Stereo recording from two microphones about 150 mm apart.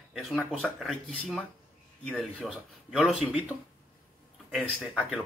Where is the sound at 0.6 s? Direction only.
Centre (ahead or behind).